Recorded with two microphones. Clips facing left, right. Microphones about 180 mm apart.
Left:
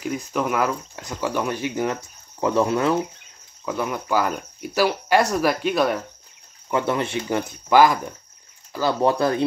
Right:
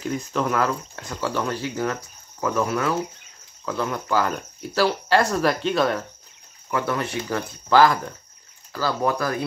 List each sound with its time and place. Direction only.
0.0 s speech: 10° left (ahead or behind)
3.6 s speech: 10° left (ahead or behind)
6.7 s speech: 20° left (ahead or behind)